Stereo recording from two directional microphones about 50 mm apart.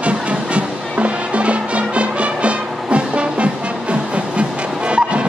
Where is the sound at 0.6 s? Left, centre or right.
Right.